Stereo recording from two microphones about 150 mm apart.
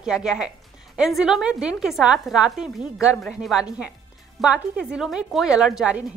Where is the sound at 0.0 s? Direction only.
5° right (ahead or behind).